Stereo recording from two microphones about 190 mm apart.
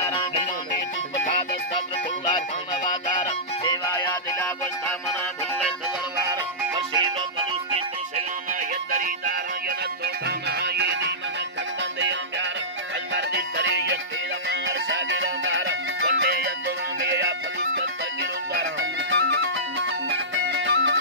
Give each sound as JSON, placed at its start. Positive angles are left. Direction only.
{"t": 2.2, "sound": "music", "side_deg": 25}
{"t": 6.1, "sound": "music", "side_deg": -20}
{"t": 8.9, "sound": "music", "side_deg": -45}
{"t": 10.2, "sound": "music", "side_deg": -60}